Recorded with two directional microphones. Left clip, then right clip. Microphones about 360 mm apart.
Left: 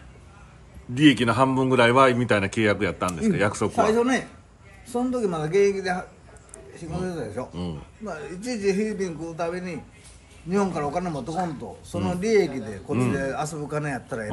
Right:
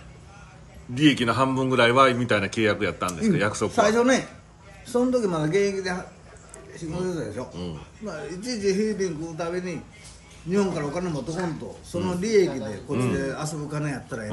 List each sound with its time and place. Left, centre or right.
0.9 s speech: centre
3.9 s a man's voice: centre